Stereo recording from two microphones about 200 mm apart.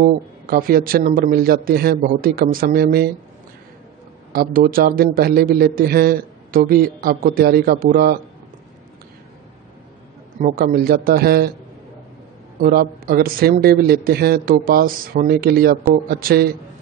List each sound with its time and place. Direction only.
0.0 s speech: 45° right (ahead or behind)
4.3 s speech: 45° right (ahead or behind)
10.4 s speech: 50° right (ahead or behind)
12.5 s speech: 45° right (ahead or behind)